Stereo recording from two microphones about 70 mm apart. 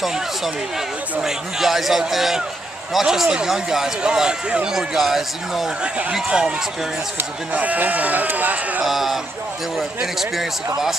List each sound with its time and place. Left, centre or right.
1.2 s speech: centre
7.5 s speech: right
8.8 s speech: centre